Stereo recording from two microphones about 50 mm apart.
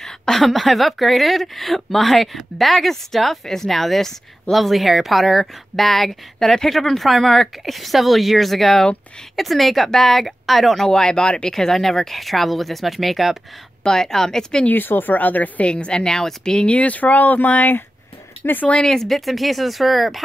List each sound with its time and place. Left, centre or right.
0.0 s a woman's voice: centre
10.9 s a woman's voice: centre
11.5 s a woman's voice: centre
13.8 s a woman's voice: centre
14.7 s speech: left
15.6 s a woman's voice: centre
16.6 s speech: left
18.9 s a woman's voice: centre